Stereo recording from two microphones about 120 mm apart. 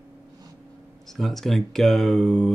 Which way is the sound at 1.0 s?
Centre (ahead or behind).